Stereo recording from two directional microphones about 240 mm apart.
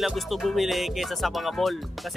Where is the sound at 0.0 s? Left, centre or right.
Centre.